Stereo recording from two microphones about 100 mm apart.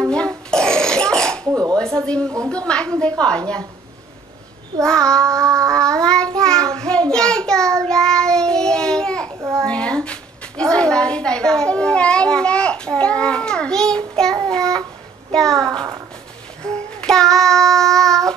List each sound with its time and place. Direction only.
0.1 s throat clearing: 10° left (ahead or behind)
1.5 s a sound: 40° right (ahead or behind)
1.8 s a woman's voice: 10° left (ahead or behind)
4.8 s a woman's voice: 5° left (ahead or behind)
5.4 s a sound: 30° right (ahead or behind)
5.7 s child singing: 5° left (ahead or behind)
9.6 s a sound: 10° left (ahead or behind)
14.5 s child singing: 5° left (ahead or behind)
15.3 s a child's voice: 5° left (ahead or behind)
16.6 s child singing: 10° left (ahead or behind)